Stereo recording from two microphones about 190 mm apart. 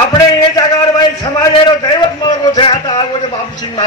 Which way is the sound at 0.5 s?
20° left (ahead or behind).